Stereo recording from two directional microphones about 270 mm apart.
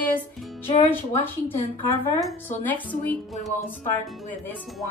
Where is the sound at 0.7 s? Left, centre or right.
Left.